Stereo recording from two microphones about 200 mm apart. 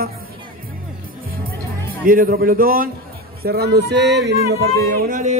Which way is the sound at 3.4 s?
50° right (ahead or behind).